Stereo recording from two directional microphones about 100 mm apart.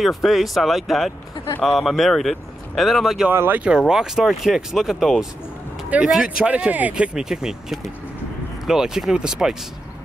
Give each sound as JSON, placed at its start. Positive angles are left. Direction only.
{"t": 0.0, "sound": "speech", "side_deg": 0}
{"t": 3.3, "sound": "speech", "side_deg": -20}
{"t": 3.6, "sound": "speech", "side_deg": -5}